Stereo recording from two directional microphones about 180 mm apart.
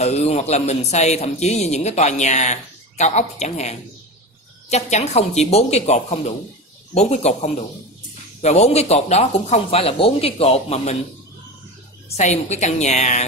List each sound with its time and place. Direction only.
0.0 s a man's voice: 35° left (ahead or behind)
12.2 s a man's voice: 40° left (ahead or behind)